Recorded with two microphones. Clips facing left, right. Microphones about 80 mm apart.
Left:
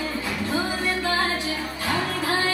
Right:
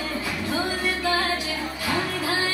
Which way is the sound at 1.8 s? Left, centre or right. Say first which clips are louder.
Left 1 dB; left.